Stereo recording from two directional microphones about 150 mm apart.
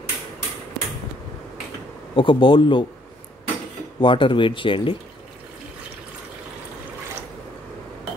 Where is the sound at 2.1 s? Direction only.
35° left (ahead or behind).